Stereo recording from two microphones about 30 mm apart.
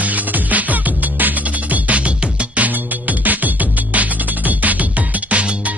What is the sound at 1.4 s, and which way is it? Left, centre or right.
Music, right.